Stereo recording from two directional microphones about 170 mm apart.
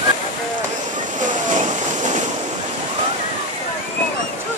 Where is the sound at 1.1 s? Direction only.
45° right (ahead or behind).